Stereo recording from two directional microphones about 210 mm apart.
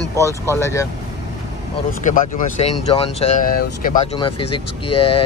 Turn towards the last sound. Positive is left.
turn(degrees=25)  # may be behind; listen again after turning